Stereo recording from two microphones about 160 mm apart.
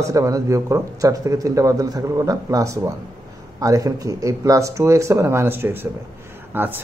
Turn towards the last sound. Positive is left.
turn(degrees=-15)  # may be behind; listen again after turning